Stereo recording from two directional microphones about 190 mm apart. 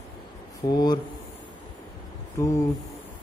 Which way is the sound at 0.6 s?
20° left (ahead or behind).